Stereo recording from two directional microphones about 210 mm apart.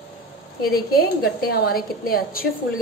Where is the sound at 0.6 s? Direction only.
50° left (ahead or behind).